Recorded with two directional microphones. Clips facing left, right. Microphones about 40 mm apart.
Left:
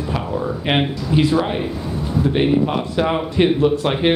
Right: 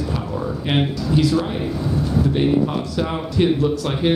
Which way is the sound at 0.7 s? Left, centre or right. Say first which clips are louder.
Left 1 dB; left.